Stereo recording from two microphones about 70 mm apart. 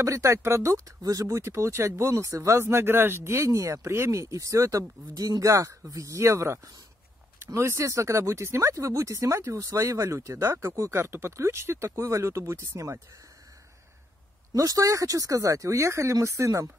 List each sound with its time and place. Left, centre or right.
0.0 s speech: right
2.7 s speech: right
14.5 s speech: right